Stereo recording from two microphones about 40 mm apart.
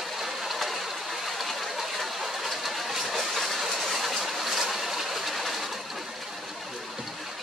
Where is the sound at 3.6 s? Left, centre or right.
Centre.